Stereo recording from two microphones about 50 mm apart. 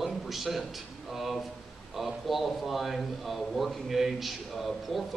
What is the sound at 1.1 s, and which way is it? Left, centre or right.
A man's voice, centre.